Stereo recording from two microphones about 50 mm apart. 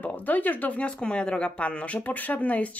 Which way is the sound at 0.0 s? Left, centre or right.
Left.